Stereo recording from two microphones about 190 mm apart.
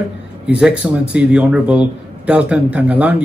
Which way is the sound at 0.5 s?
5° right (ahead or behind).